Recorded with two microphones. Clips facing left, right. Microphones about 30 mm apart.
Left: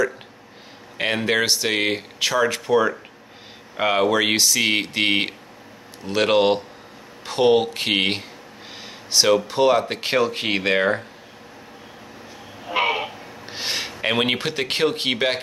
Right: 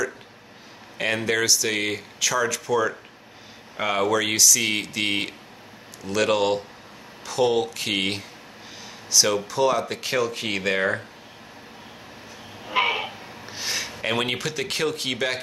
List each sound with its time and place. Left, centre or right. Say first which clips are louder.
0.9 s speech: left 3 dB; left
10.8 s speech: left 3 dB; centre
12.6 s a sound: left 1 dB; centre
13.5 s gasp: left 3 dB; left
14.0 s speech: left 4 dB; left